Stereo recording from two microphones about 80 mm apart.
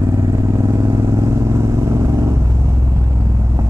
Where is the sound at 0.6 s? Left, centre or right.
Right.